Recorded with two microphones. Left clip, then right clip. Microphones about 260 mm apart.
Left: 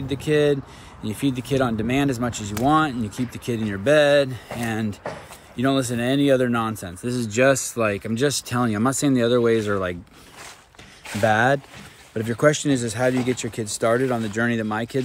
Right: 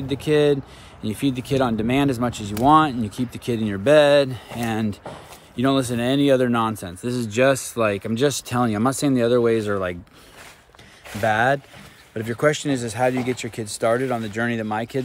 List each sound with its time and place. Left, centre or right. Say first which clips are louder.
0.1 s speech: right 1 dB; centre
11.1 s speech: left 1 dB; centre